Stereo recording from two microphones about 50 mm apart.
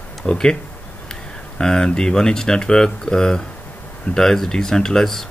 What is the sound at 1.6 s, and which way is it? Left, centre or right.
Speech, centre.